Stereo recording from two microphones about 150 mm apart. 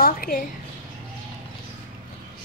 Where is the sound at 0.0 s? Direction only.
70° left (ahead or behind).